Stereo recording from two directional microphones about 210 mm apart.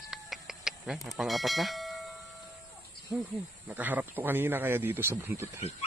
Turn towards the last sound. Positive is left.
turn(degrees=-10)  # may be behind; listen again after turning